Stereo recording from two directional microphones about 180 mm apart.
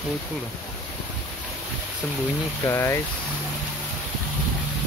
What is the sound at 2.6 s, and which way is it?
Speech, 15° left (ahead or behind).